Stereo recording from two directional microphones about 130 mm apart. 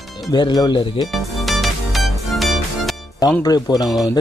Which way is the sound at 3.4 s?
30° left (ahead or behind).